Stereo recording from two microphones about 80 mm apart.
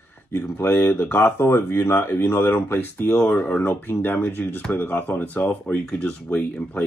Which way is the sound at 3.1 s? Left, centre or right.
Centre.